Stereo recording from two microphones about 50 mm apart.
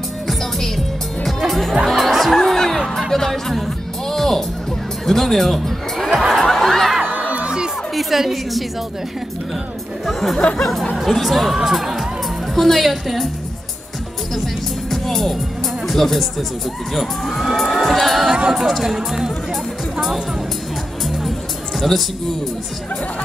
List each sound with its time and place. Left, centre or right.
1.2 s music: centre
5.0 s speech: centre
6.1 s a sound: centre
7.0 s music: right
7.3 s crowd: centre
7.9 s a woman's voice: centre
10.0 s speech: centre
14.9 s music: centre
15.9 s speech: centre
21.0 s music: centre
21.7 s a man's voice: centre